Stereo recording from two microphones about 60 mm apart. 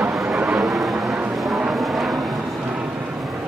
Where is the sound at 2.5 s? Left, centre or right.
Centre.